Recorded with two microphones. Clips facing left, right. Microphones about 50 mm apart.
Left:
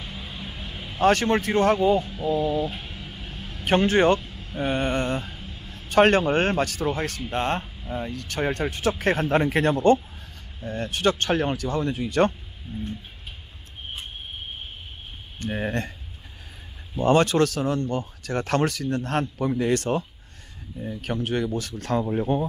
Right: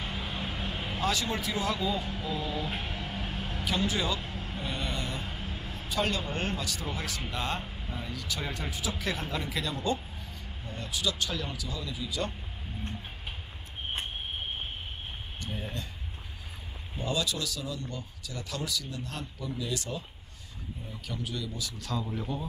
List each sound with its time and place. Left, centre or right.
0.3 s a sound: right
1.0 s speech: left
1.8 s speech: left
2.2 s a sound: left
2.5 s a sound: right
3.0 s music: right
3.6 s speech: left
4.2 s vehicle: right
4.6 s speech: left
5.4 s a sound: right
5.9 s speech: left
15.3 s speech: left
17.0 s speech: left